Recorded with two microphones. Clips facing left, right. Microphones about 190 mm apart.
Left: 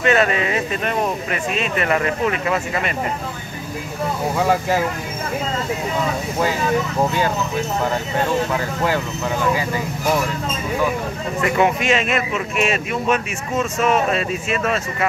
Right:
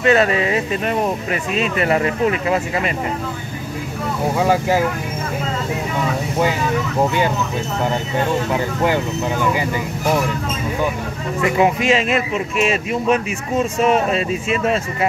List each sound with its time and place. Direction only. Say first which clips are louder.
0.0 s speech: right 2 dB; 30° right (ahead or behind)
4.4 s speech: right 2 dB; 10° right (ahead or behind)
8.5 s speech: right 3 dB; 20° right (ahead or behind)
11.4 s speech: right 2 dB; 25° right (ahead or behind)